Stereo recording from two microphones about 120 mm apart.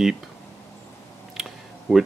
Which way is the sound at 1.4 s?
5° right (ahead or behind).